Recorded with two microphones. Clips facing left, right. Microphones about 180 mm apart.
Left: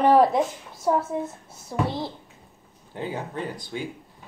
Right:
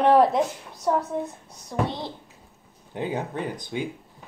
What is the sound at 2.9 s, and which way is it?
Speech, 15° right (ahead or behind).